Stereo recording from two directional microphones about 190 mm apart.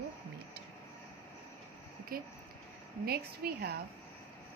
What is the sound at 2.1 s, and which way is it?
A woman's voice, 50° right (ahead or behind).